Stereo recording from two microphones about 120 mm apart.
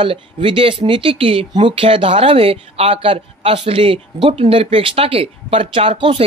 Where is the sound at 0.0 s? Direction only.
45° right (ahead or behind).